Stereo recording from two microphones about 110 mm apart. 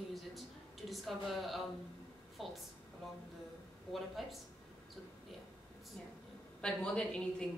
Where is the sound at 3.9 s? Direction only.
Centre (ahead or behind).